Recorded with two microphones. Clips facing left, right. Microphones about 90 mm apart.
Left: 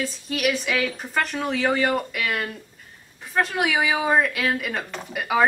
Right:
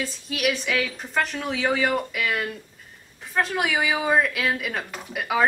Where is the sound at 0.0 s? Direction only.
Centre (ahead or behind).